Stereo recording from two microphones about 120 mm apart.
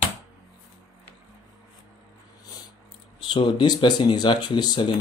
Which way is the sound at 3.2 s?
40° left (ahead or behind).